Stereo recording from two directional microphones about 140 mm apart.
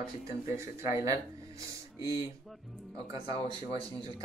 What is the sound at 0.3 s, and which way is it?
Speech, 20° right (ahead or behind).